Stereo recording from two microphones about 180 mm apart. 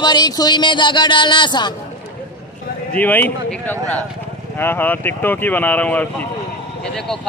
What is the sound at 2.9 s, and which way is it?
A man's voice, 10° left (ahead or behind).